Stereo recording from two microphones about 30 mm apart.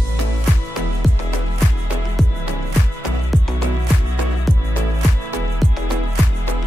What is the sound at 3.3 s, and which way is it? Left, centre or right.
Music, centre.